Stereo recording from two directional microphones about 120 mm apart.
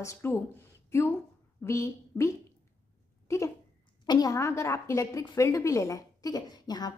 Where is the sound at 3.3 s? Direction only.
25° left (ahead or behind).